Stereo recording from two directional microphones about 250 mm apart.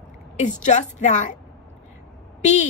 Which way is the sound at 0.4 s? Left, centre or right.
Left.